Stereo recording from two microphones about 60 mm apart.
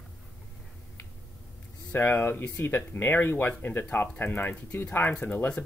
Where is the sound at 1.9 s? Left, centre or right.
Left.